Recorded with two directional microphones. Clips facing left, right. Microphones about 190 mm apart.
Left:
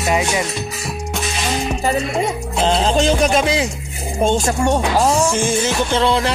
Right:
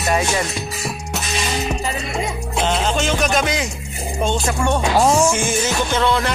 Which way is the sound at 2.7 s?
35° left (ahead or behind).